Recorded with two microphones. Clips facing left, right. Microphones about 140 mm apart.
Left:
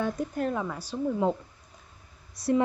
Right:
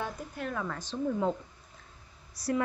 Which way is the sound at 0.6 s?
10° left (ahead or behind).